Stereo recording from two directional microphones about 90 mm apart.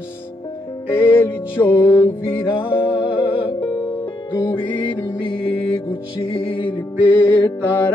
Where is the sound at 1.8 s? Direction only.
65° left (ahead or behind).